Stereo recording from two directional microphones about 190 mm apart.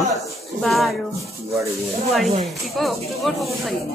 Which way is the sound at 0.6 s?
Centre (ahead or behind).